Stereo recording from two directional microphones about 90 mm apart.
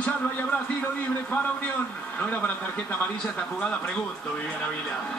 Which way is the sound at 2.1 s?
15° left (ahead or behind).